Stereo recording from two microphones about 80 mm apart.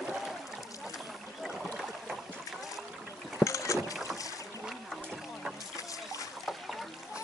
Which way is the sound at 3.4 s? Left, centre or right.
Left.